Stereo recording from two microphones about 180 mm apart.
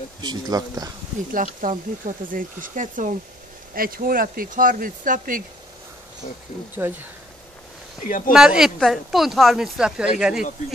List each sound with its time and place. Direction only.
0.2 s speech: 20° right (ahead or behind)
1.3 s speech: 45° right (ahead or behind)
6.8 s speech: 10° right (ahead or behind)
8.3 s speech: 5° right (ahead or behind)